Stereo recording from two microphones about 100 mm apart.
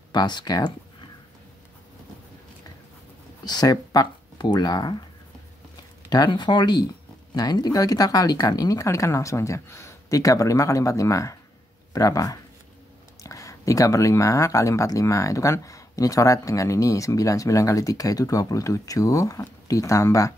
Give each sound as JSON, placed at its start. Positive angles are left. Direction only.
{"t": 0.1, "sound": "speech", "side_deg": 45}
{"t": 3.4, "sound": "speech", "side_deg": 40}
{"t": 6.0, "sound": "speech", "side_deg": 45}